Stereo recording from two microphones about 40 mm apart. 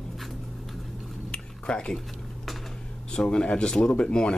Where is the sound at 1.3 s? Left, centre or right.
Left.